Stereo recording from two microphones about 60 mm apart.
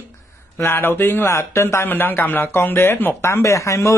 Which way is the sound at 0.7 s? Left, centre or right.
Left.